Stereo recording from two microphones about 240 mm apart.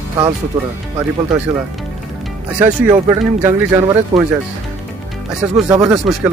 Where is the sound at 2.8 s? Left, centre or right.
Centre.